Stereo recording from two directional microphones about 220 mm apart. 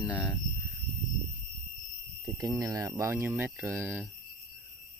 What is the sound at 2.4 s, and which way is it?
Speech, 15° right (ahead or behind).